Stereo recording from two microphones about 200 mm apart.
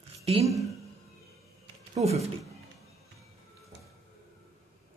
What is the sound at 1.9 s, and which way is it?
Speech, 30° right (ahead or behind).